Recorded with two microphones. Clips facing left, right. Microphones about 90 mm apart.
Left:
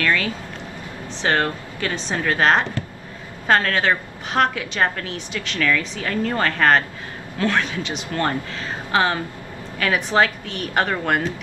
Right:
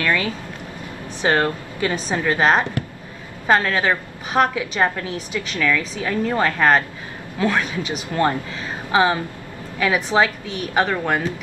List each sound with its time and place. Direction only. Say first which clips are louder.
0.0 s a woman's voice: even; 20° right (ahead or behind)